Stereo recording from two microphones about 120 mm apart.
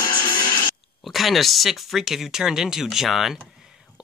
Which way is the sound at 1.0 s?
Centre (ahead or behind).